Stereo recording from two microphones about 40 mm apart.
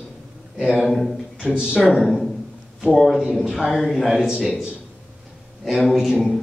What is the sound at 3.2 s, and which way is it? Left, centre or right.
Speech, centre.